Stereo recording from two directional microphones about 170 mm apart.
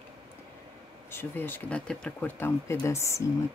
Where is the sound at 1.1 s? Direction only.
10° left (ahead or behind).